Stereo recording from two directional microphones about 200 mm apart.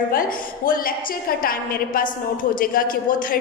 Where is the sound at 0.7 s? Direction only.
45° left (ahead or behind).